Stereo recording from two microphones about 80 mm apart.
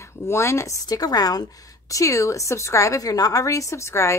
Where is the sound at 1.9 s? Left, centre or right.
Left.